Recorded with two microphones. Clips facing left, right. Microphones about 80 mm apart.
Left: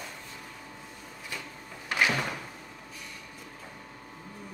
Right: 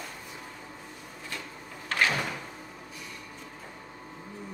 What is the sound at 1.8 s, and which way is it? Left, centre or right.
Door, centre.